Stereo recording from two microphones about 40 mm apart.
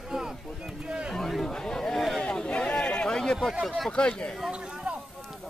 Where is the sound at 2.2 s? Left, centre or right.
Left.